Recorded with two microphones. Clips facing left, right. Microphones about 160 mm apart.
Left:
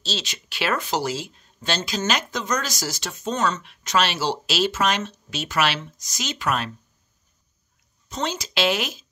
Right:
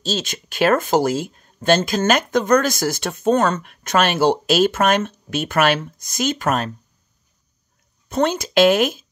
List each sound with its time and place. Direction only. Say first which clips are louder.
0.0 s speech: right 7 dB; 50° right (ahead or behind)
8.1 s speech: right 9 dB; 55° right (ahead or behind)